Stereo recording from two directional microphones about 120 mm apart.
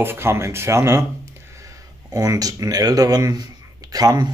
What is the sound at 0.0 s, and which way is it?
Speech, 20° right (ahead or behind).